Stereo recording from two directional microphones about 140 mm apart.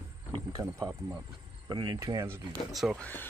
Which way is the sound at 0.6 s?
25° right (ahead or behind).